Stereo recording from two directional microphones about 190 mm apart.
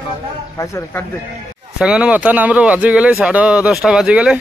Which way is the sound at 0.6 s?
15° left (ahead or behind).